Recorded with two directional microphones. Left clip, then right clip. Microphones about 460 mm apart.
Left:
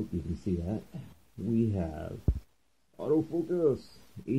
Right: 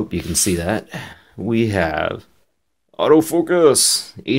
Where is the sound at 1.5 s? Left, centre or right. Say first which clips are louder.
Right 15 dB; right.